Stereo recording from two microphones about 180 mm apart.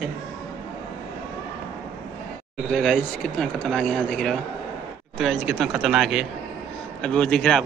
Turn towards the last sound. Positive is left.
turn(degrees=5)  # may be behind; listen again after turning